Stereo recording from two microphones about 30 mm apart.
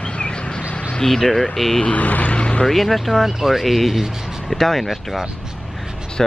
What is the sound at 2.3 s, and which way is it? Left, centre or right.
Speech, left.